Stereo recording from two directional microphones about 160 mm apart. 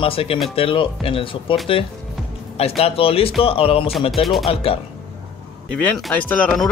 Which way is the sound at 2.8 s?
35° left (ahead or behind).